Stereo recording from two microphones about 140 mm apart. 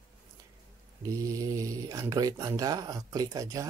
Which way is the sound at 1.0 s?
20° right (ahead or behind).